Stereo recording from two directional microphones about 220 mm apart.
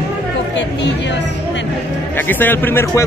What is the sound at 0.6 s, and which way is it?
A woman's voice, 55° left (ahead or behind).